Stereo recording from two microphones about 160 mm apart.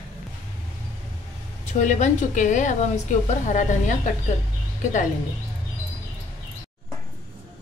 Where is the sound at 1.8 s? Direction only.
50° left (ahead or behind).